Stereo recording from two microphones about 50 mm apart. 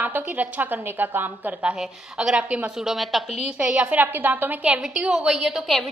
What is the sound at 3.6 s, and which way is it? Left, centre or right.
A woman's voice, right.